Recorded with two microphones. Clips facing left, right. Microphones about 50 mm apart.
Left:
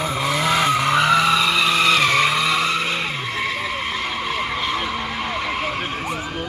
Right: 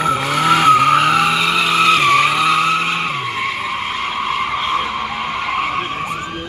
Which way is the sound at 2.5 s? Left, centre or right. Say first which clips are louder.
Right 5 dB; centre.